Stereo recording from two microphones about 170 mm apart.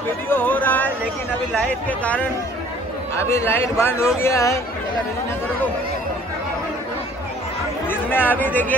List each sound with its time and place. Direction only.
0.3 s a sound: 10° left (ahead or behind)
1.5 s a man's voice: 5° left (ahead or behind)
7.9 s speech: 10° left (ahead or behind)